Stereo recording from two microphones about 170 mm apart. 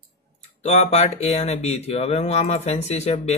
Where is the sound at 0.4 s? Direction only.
40° left (ahead or behind).